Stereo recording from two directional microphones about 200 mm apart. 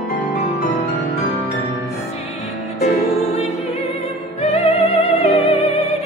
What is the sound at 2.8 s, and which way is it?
Music, 35° left (ahead or behind).